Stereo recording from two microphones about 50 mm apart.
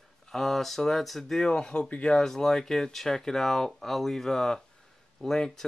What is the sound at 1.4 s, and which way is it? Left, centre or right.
Speech, centre.